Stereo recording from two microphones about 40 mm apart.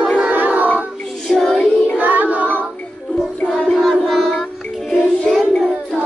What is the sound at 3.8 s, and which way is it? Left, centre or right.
Child singing, centre.